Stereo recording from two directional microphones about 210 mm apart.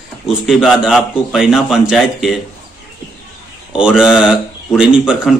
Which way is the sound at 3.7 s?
5° right (ahead or behind).